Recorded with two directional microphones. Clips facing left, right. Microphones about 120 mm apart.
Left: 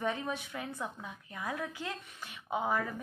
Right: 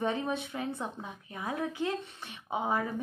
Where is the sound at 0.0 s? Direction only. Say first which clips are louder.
Right 3 dB; 25° right (ahead or behind).